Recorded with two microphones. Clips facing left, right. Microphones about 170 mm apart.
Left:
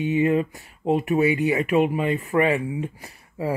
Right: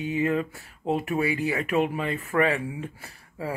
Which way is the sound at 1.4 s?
35° right (ahead or behind).